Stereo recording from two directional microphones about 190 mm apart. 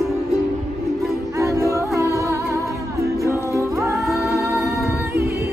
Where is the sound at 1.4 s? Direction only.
15° right (ahead or behind).